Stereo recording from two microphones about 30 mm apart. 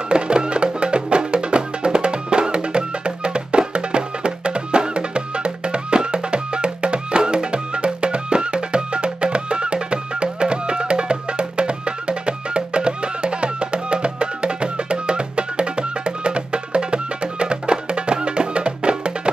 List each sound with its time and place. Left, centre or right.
0.1 s music: right